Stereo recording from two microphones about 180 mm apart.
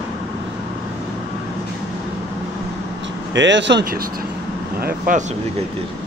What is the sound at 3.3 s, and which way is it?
Speech, 85° right.